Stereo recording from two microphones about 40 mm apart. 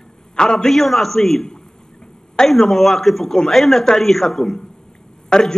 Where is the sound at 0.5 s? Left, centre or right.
Centre.